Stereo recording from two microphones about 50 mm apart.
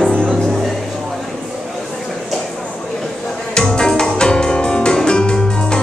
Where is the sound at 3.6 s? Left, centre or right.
Centre.